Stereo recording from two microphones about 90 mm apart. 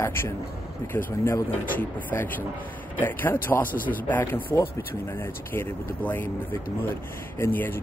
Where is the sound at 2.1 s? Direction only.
25° left (ahead or behind).